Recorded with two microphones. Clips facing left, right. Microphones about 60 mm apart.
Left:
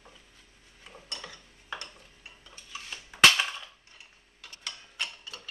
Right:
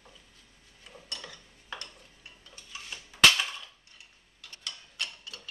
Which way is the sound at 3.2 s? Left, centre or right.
Left.